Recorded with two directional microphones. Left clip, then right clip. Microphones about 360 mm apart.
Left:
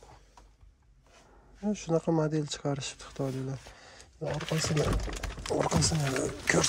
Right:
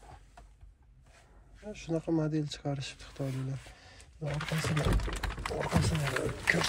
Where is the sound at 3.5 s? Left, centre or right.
Left.